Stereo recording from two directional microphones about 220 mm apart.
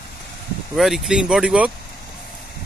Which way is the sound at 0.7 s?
Centre (ahead or behind).